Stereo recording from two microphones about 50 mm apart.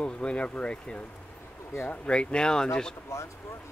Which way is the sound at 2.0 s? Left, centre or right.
Centre.